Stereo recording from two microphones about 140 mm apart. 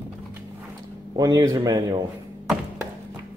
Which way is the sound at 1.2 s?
30° right (ahead or behind).